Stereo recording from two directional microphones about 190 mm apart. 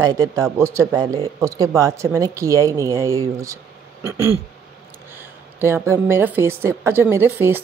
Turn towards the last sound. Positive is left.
turn(degrees=-10)  # may be behind; listen again after turning